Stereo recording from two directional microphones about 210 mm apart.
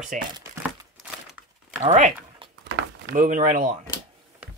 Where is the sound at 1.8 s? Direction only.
35° right (ahead or behind).